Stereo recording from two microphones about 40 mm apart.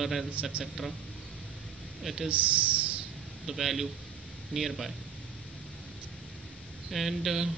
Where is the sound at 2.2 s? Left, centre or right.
Right.